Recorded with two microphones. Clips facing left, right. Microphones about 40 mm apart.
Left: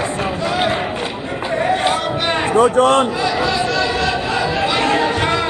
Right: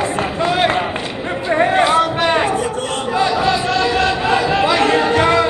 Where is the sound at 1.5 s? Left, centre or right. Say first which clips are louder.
Right 4 dB; right.